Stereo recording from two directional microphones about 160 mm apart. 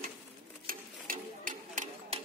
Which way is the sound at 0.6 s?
60° right (ahead or behind).